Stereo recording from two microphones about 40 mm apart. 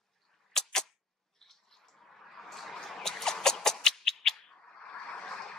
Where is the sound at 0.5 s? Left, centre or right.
Centre.